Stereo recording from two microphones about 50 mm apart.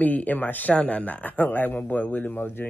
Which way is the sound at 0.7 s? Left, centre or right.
Left.